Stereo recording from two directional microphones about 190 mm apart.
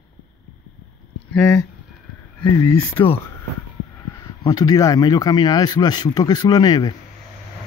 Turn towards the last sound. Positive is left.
turn(degrees=20)  # may be behind; listen again after turning